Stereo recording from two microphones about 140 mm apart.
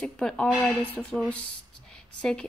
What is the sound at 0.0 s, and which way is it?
Speech, 5° left (ahead or behind).